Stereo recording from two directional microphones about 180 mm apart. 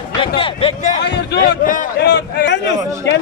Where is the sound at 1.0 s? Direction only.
70° left (ahead or behind); by 1.8 s 50° left (ahead or behind).